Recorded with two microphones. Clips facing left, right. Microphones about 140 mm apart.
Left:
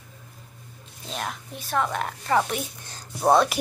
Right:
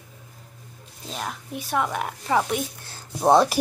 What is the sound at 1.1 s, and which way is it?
A woman's voice, 5° right (ahead or behind).